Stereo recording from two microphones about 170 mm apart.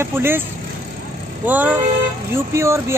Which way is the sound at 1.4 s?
10° right (ahead or behind).